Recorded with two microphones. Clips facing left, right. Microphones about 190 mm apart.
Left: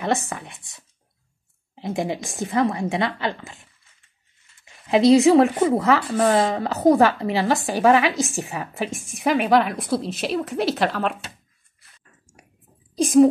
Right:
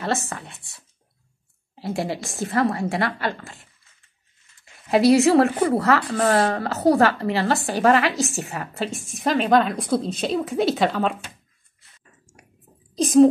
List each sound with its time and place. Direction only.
0.0 s a woman's voice: 15° left (ahead or behind)
4.9 s a woman's voice: 20° left (ahead or behind); by 11.1 s centre (ahead or behind)
12.9 s speech: 10° left (ahead or behind)